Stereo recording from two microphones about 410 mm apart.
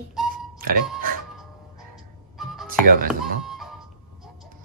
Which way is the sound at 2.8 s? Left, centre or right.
Right.